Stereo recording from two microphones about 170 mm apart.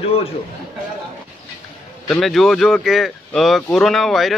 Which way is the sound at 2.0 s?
Centre (ahead or behind).